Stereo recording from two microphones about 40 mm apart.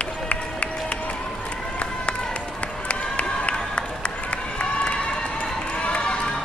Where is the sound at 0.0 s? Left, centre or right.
Left.